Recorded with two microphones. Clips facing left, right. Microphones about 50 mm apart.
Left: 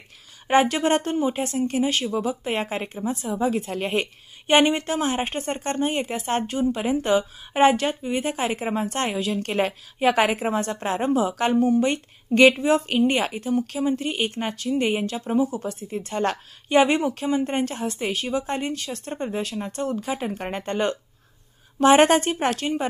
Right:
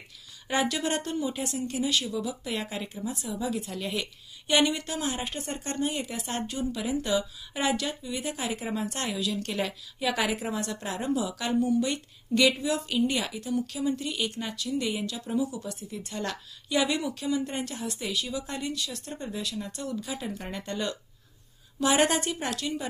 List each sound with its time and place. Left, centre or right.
0.5 s speech: left